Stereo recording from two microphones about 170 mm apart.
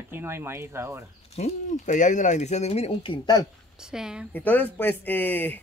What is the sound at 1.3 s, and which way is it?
Speech, 45° left (ahead or behind).